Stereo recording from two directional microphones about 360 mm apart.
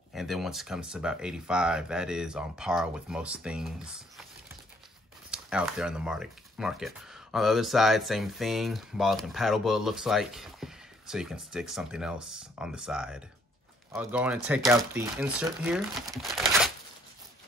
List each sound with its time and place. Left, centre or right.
0.1 s speech: centre
5.3 s speech: centre